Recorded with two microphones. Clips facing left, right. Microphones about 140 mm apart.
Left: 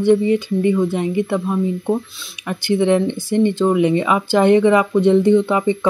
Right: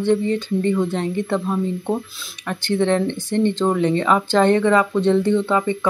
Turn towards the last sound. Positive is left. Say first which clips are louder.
# left 4 dB
turn(degrees=15)  # may be behind; listen again after turning